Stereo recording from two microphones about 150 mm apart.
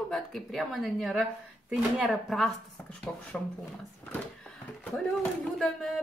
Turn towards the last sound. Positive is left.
turn(degrees=0)  # may be behind; listen again after turning